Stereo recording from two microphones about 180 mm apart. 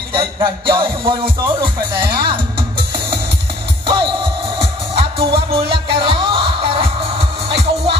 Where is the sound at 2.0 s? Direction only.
30° right (ahead or behind).